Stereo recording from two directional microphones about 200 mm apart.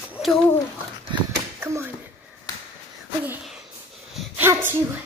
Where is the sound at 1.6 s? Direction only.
10° right (ahead or behind).